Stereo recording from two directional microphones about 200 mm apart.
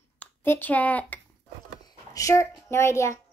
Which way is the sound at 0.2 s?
10° left (ahead or behind).